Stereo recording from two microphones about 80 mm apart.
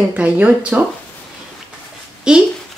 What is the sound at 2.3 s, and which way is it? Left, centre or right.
Speech, centre.